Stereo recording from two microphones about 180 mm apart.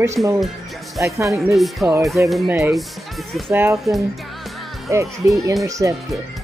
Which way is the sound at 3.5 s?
10° right (ahead or behind).